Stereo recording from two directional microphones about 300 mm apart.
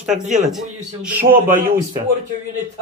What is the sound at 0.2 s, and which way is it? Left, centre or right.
Speech, right.